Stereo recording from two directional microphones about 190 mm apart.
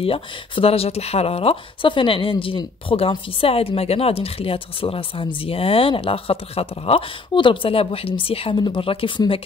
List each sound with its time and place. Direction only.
0.0 s speech: 30° left (ahead or behind)